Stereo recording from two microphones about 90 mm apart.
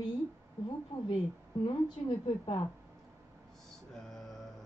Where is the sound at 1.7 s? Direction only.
70° left (ahead or behind).